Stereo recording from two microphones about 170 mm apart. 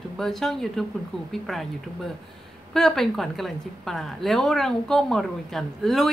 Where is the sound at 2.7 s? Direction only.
Centre (ahead or behind).